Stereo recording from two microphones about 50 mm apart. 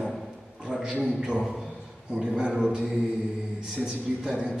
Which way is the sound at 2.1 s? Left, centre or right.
Centre.